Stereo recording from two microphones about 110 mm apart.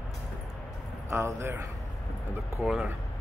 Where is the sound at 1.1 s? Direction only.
25° right (ahead or behind).